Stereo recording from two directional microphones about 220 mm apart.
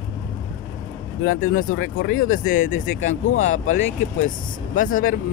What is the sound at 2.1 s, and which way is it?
Speech, 35° left (ahead or behind).